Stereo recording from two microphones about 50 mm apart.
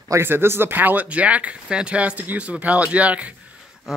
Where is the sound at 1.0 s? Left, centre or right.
Right.